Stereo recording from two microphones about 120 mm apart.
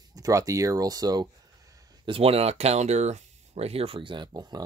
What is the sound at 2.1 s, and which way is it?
Speech, 55° right (ahead or behind).